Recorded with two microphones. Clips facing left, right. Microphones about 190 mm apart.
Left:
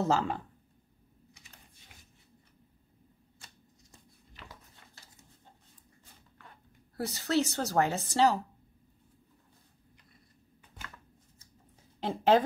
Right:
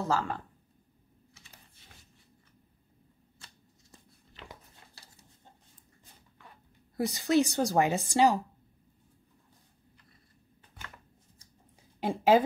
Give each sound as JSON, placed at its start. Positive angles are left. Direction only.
{"t": 0.0, "sound": "speech", "side_deg": 20}
{"t": 7.0, "sound": "speech", "side_deg": -15}
{"t": 12.0, "sound": "speech", "side_deg": -10}